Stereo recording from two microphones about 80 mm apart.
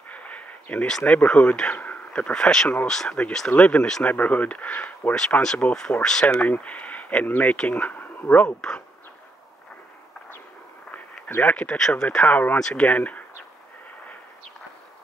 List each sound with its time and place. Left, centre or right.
0.1 s a sound: centre
1.0 s speech: centre
5.1 s speech: centre
11.2 s speech: left
11.5 s speech: centre